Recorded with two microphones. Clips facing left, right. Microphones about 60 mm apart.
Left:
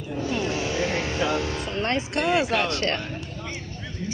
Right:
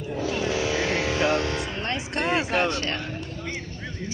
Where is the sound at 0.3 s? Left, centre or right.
Right.